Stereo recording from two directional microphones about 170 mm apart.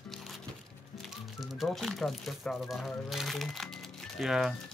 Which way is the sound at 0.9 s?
Centre (ahead or behind).